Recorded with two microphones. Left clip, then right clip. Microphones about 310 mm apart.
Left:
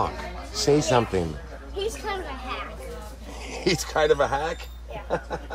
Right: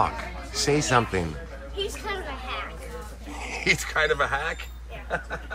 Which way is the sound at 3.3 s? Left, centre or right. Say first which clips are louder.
Right 2 dB; centre.